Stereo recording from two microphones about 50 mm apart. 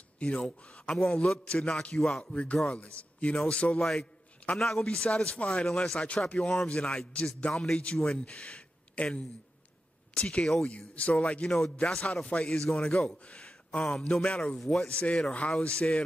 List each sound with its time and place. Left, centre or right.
0.2 s speech: centre
4.6 s speech: centre
5.1 s speech: left
5.7 s speech: centre
6.2 s speech: left
11.4 s speech: centre
12.1 s speech: centre
14.6 s a man's voice: centre
14.9 s speech: centre